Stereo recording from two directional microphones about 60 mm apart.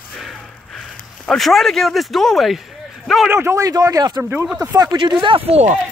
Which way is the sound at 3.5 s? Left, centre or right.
Right.